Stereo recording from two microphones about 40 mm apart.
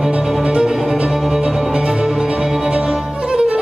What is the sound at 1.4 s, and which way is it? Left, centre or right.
Music, centre.